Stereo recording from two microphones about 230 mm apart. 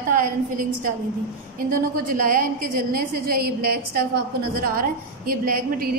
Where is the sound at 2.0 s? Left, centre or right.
Right.